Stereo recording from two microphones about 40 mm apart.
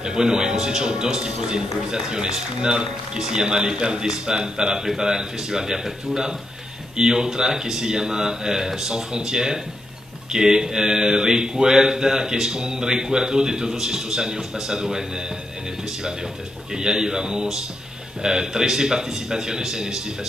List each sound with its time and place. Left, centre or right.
0.0 s a man's voice: centre
4.8 s mantra: centre
16.7 s mantra: centre